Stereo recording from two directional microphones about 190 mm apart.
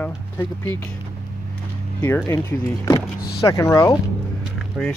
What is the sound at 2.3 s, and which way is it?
Speech, 15° left (ahead or behind).